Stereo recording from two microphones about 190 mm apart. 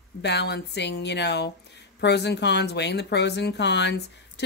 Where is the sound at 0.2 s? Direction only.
65° left (ahead or behind).